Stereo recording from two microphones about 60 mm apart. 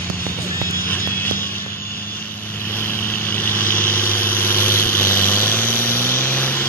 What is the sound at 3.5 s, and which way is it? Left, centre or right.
Vehicle, left.